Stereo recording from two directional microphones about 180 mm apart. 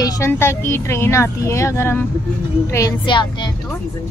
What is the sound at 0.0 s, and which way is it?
Speech, 15° left (ahead or behind).